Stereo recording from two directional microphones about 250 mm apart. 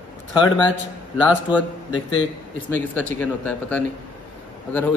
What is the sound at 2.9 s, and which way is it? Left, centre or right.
Speech, centre.